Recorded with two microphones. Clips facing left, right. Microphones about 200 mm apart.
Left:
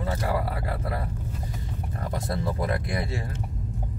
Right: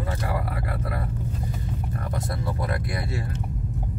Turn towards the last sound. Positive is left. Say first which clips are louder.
# left 1 dB
turn(degrees=25)  # may be behind; listen again after turning